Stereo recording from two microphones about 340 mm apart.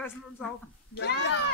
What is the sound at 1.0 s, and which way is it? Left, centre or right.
Speech, left.